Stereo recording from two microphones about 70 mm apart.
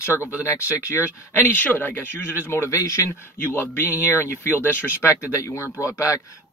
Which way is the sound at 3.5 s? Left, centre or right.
Left.